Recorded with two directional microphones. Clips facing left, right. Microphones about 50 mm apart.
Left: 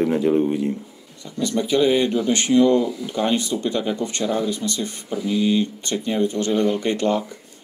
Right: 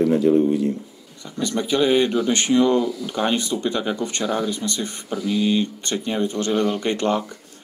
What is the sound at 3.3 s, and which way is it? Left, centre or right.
Speech, right.